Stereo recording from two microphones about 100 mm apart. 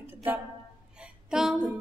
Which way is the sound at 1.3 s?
5° right (ahead or behind).